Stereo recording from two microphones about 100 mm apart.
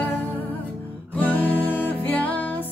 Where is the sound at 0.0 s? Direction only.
15° left (ahead or behind).